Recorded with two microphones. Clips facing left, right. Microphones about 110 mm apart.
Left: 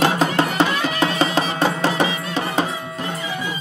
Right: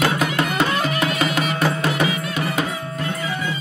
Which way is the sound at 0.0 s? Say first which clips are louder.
Left 3 dB; 30° left (ahead or behind).